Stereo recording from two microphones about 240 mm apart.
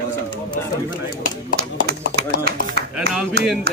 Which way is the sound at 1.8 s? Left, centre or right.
Right.